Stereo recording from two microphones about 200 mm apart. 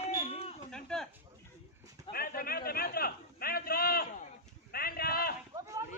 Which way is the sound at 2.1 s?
50° left (ahead or behind).